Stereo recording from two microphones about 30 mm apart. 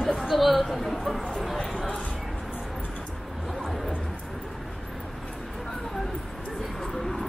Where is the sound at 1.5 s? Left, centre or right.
Left.